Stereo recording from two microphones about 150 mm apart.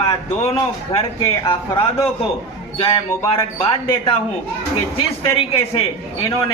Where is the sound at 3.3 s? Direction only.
35° left (ahead or behind).